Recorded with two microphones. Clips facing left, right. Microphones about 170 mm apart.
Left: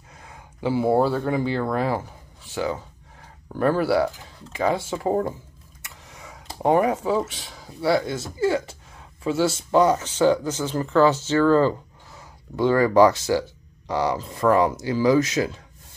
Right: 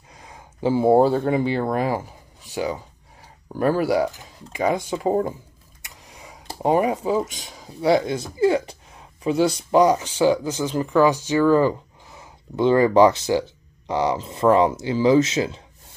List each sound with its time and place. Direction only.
0.7 s speech: 25° right (ahead or behind)